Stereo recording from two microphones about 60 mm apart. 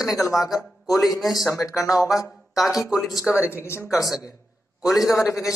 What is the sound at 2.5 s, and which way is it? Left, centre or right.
Speech, centre.